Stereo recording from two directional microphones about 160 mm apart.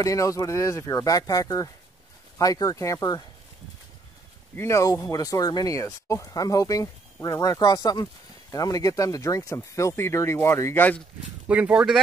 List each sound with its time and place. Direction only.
0.0 s speech: 20° left (ahead or behind)
4.6 s speech: 20° left (ahead or behind)
11.4 s speech: 10° right (ahead or behind)